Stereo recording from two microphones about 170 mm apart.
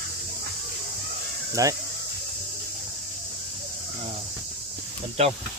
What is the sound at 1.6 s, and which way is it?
Speech, 20° right (ahead or behind).